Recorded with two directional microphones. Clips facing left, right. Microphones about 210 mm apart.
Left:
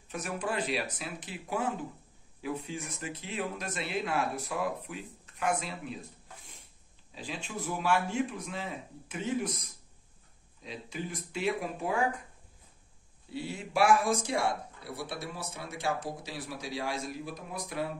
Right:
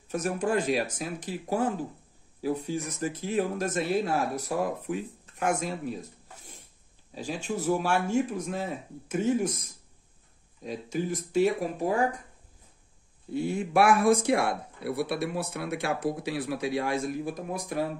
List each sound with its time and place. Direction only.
0.1 s speech: 45° right (ahead or behind)
7.2 s speech: 45° right (ahead or behind)
10.6 s speech: 45° right (ahead or behind)
13.3 s speech: 50° right (ahead or behind)